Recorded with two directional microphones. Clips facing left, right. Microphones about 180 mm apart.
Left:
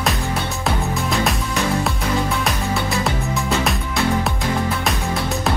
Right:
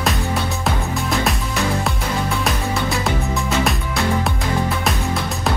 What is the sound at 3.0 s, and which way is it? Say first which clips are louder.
Music: right 1 dB; centre (ahead or behind).